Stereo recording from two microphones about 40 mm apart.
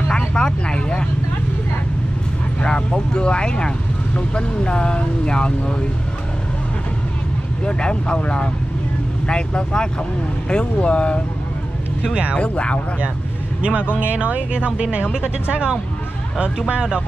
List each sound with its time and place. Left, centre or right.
0.3 s speech: left
2.6 s speech: left
7.6 s speech: left
12.4 s speech: left
13.6 s speech: right